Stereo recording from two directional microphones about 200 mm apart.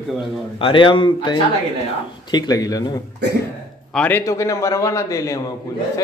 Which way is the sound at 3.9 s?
10° left (ahead or behind).